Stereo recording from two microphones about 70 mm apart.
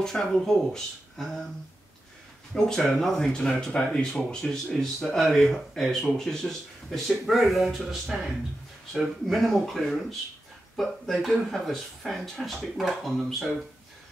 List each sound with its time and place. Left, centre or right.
0.0 s speech: centre
2.5 s speech: centre